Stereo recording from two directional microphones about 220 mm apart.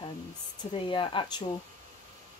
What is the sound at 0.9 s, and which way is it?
Speech, 20° left (ahead or behind).